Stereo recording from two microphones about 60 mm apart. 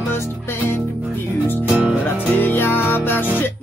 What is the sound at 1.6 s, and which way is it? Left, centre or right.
Speech, right.